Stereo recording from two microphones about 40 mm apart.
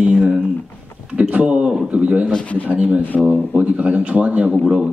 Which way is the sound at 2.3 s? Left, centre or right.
Left.